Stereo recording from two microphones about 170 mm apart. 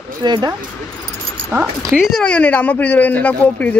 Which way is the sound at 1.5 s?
15° right (ahead or behind).